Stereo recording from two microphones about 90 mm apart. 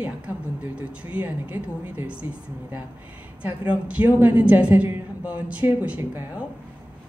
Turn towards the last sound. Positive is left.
turn(degrees=-25)  # may be behind; listen again after turning